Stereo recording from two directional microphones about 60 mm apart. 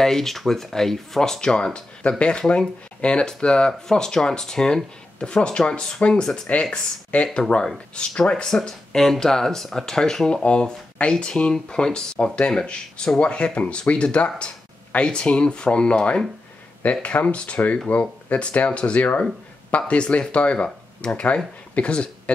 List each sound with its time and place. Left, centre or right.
0.0 s speech: centre